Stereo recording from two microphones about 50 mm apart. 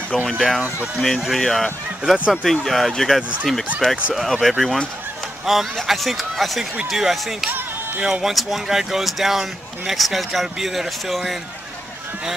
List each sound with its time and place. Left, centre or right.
0.3 s speech: centre
2.1 s speech: right
2.5 s speech: centre